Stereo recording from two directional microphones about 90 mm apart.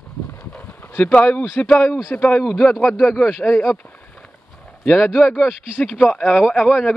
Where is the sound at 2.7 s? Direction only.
Centre (ahead or behind).